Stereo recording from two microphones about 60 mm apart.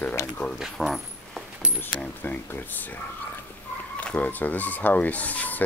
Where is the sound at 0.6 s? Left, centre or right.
Centre.